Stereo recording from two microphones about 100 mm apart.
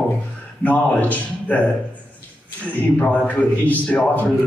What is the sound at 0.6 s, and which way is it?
Speech, 15° left (ahead or behind).